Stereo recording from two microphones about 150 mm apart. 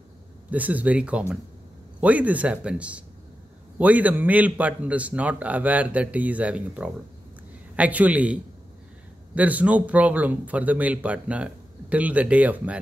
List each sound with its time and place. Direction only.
0.5 s a man's voice: 10° right (ahead or behind)